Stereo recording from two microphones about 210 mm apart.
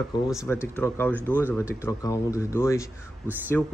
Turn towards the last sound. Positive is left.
turn(degrees=5)  # may be behind; listen again after turning